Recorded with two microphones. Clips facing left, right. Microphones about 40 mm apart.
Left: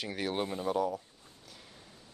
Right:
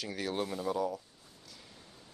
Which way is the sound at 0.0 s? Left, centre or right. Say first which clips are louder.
Left 1 dB; left.